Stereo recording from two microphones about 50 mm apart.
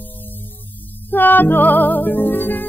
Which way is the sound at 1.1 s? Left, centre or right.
Left.